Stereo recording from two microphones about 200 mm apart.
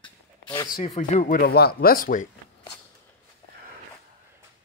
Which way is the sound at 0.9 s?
35° left (ahead or behind).